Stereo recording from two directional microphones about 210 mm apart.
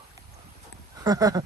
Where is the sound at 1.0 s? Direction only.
20° right (ahead or behind).